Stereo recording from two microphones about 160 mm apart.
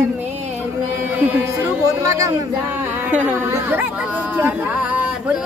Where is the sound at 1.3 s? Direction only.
15° right (ahead or behind).